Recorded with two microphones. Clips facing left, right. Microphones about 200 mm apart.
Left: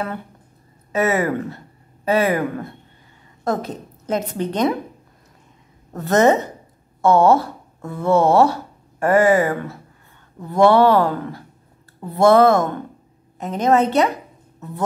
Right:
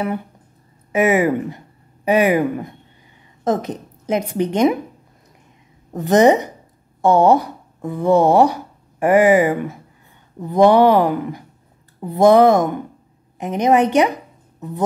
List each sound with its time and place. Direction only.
0.9 s a woman's voice: 15° right (ahead or behind)
5.9 s a woman's voice: 15° right (ahead or behind)